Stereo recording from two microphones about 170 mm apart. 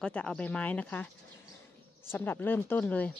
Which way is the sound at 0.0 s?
5° left (ahead or behind).